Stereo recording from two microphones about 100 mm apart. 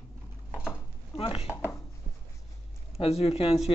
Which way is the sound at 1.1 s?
70° left (ahead or behind).